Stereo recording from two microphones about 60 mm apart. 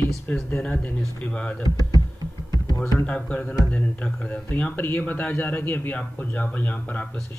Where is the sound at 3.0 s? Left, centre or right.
Left.